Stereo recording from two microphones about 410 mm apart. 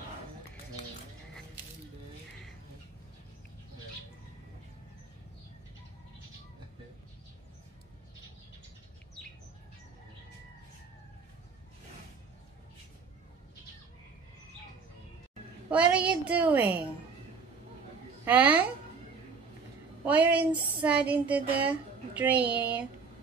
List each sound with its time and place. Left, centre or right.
15.7 s speech: centre
18.2 s speech: centre
20.1 s speech: centre